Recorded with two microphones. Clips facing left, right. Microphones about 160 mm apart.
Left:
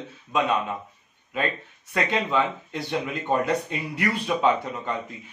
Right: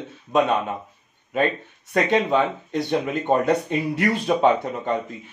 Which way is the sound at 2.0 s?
55° right (ahead or behind).